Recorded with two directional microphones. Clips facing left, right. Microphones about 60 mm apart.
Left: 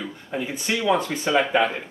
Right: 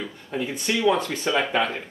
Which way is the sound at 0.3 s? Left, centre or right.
Centre.